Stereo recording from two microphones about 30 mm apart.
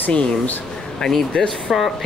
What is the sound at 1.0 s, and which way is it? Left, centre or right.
Speech, centre.